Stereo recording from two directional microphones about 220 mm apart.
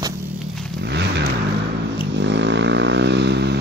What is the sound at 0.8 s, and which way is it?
Vehicle, 50° right (ahead or behind).